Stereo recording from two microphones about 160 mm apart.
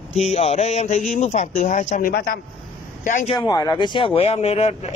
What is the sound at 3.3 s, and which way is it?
Speech, 25° left (ahead or behind).